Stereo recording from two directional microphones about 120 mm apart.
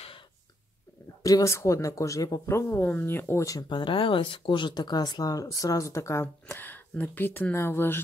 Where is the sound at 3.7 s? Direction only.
45° left (ahead or behind).